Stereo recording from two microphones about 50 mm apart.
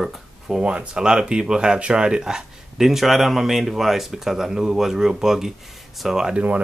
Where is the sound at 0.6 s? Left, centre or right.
Centre.